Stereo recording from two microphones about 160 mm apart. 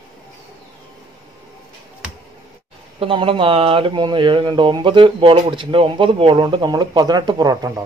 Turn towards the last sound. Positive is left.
turn(degrees=-25)  # may be behind; listen again after turning